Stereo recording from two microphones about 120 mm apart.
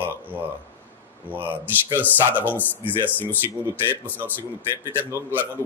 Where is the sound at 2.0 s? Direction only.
15° left (ahead or behind).